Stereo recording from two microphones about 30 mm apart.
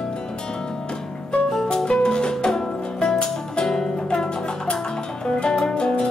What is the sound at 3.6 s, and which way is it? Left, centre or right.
Music, centre.